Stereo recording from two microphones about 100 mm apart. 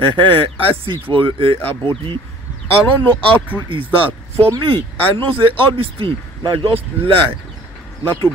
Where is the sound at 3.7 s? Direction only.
60° right (ahead or behind).